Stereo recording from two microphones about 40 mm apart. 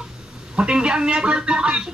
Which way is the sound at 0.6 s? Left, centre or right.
Right.